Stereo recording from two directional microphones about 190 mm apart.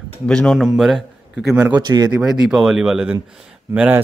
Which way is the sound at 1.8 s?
20° right (ahead or behind).